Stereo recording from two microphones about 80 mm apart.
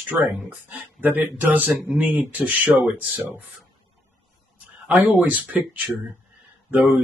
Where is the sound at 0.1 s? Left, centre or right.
Right.